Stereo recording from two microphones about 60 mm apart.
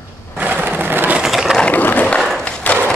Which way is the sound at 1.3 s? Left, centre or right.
Centre.